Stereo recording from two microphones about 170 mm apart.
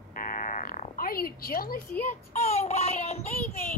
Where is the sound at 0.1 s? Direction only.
50° left (ahead or behind).